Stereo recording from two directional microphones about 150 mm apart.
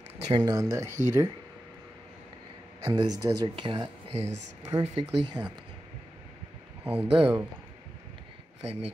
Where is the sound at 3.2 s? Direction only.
35° right (ahead or behind).